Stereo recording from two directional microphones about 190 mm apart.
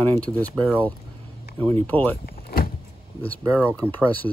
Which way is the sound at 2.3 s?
55° left (ahead or behind).